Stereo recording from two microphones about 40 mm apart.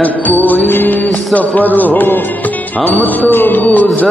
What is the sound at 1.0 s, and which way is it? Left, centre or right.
Music, left.